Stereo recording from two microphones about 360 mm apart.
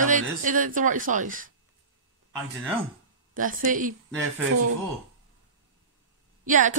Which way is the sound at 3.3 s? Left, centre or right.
Right.